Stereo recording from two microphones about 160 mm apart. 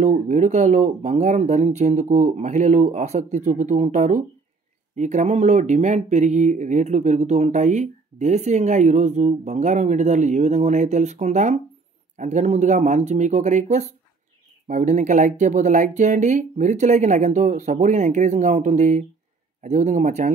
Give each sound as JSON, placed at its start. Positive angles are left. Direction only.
{"t": 0.0, "sound": "speech", "side_deg": -50}